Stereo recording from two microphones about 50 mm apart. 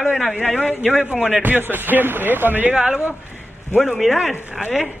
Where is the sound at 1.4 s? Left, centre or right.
Right.